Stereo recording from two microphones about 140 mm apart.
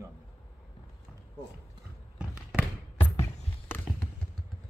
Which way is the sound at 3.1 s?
15° left (ahead or behind).